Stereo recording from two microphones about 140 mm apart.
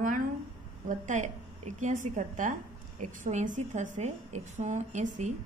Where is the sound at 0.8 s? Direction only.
60° right (ahead or behind).